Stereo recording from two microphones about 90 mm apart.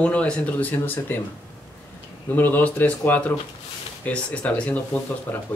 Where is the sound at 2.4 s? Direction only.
20° left (ahead or behind).